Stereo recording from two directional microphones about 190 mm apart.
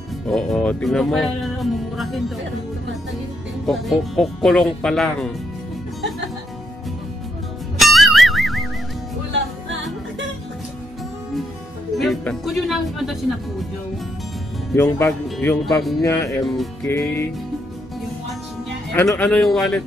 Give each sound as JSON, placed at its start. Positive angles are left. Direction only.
{"t": 0.3, "sound": "speech", "side_deg": 5}
{"t": 3.6, "sound": "speech", "side_deg": 0}
{"t": 7.8, "sound": "music", "side_deg": 0}
{"t": 12.0, "sound": "speech", "side_deg": 0}
{"t": 14.8, "sound": "speech", "side_deg": 10}
{"t": 15.2, "sound": "speech", "side_deg": 0}
{"t": 16.0, "sound": "speech", "side_deg": 15}
{"t": 18.9, "sound": "speech", "side_deg": 10}